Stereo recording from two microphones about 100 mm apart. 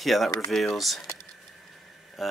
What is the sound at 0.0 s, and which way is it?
Speech, centre (ahead or behind).